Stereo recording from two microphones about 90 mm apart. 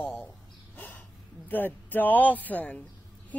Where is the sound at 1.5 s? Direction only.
20° left (ahead or behind).